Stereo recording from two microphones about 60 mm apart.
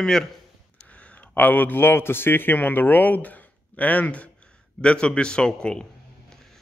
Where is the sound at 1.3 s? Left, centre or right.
Left; by 5.8 s centre.